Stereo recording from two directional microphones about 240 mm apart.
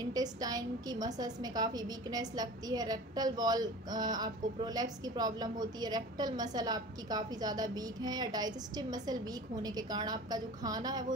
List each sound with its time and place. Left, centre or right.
0.0 s a woman's voice: centre